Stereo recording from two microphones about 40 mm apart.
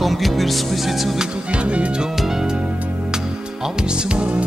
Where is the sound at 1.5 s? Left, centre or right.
Right.